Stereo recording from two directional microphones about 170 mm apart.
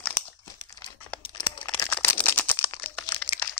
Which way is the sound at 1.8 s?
10° left (ahead or behind).